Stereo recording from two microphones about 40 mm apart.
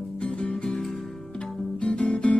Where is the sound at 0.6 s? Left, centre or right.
Left.